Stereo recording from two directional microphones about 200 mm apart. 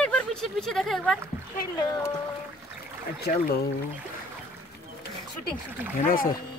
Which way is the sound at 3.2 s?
50° left (ahead or behind).